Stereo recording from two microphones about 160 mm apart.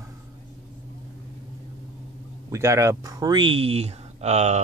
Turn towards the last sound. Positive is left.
turn(degrees=-45)  # may be behind; listen again after turning